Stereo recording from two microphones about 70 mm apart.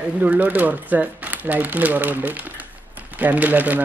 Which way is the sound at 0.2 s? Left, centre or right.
Right.